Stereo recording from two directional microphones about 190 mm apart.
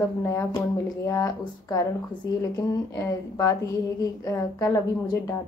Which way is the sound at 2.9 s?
15° left (ahead or behind).